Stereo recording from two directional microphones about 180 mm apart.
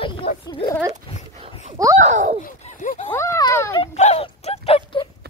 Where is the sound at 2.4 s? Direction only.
45° left (ahead or behind).